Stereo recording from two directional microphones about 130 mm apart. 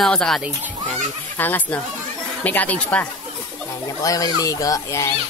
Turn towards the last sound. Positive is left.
turn(degrees=25)  # may be behind; listen again after turning